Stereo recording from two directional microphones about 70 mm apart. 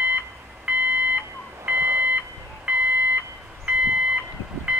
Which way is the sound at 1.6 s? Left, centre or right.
Right.